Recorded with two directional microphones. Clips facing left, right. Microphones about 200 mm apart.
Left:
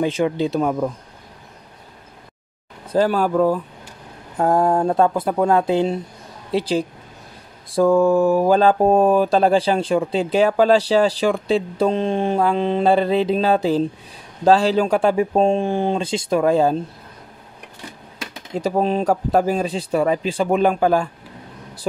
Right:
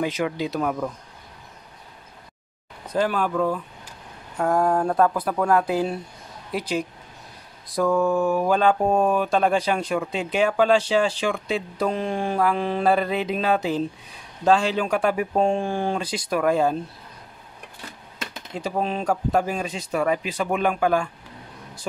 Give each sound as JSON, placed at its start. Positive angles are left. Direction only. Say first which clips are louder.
{"t": 0.0, "sound": "speech", "louder": "left 5 dB", "side_deg": 30}
{"t": 2.9, "sound": "speech", "louder": "left 5 dB", "side_deg": 35}
{"t": 18.5, "sound": "speech", "louder": "left 7 dB", "side_deg": 40}